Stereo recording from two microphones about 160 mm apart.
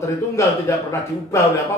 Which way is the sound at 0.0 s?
20° left (ahead or behind).